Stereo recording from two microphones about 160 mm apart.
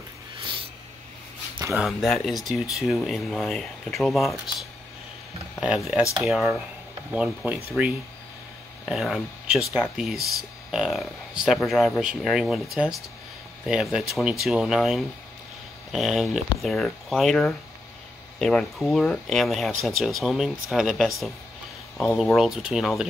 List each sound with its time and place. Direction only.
0.4 s snort: 35° right (ahead or behind)
1.5 s a sound: 20° right (ahead or behind)
1.8 s speech: centre (ahead or behind)
8.8 s speech: centre (ahead or behind)